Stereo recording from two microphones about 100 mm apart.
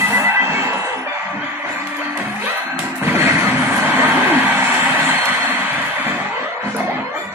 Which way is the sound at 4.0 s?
20° right (ahead or behind).